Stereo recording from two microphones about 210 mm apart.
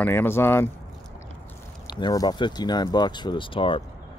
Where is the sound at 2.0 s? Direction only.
20° left (ahead or behind).